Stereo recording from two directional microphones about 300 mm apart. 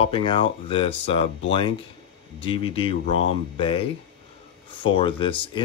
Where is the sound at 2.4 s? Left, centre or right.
Centre.